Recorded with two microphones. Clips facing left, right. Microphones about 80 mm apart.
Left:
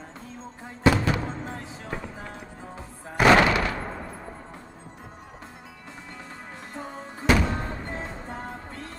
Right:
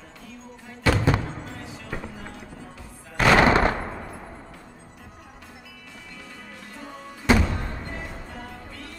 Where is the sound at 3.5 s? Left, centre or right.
Right.